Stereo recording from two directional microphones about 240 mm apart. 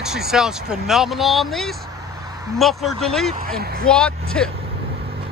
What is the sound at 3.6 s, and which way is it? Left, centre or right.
Speech, right.